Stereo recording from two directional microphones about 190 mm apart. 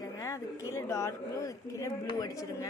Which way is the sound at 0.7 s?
15° left (ahead or behind).